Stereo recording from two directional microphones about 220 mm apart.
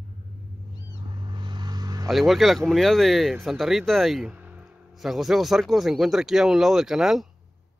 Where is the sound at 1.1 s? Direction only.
20° right (ahead or behind).